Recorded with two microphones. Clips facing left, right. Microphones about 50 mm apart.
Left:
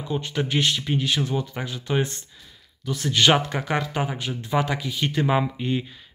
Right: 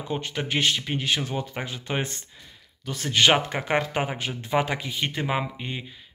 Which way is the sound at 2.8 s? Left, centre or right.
Right.